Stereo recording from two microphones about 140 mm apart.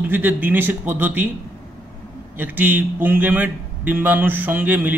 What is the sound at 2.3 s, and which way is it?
A man's voice, 15° right (ahead or behind).